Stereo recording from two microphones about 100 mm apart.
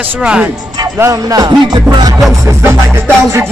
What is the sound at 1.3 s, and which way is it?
Music, 40° right (ahead or behind).